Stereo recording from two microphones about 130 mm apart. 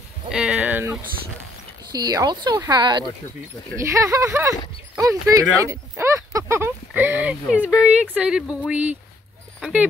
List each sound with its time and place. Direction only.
0.3 s a sound: 5° right (ahead or behind)
1.9 s speech: 30° right (ahead or behind)
3.7 s speech: 25° right (ahead or behind)